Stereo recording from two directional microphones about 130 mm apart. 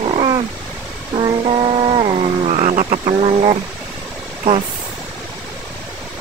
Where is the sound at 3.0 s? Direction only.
50° right (ahead or behind).